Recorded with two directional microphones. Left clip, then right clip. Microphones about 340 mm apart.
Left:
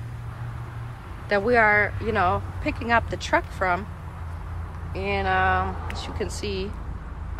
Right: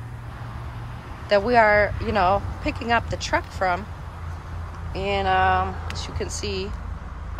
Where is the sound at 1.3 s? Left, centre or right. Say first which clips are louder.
Right 2 dB; centre.